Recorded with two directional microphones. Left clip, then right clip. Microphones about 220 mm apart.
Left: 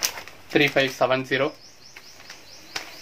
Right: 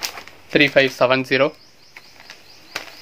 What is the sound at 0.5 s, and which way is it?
Speech, 45° right (ahead or behind).